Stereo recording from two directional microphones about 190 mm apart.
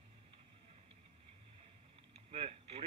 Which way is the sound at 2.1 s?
30° right (ahead or behind).